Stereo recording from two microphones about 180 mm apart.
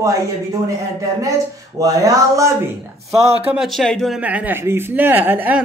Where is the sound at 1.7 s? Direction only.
20° right (ahead or behind).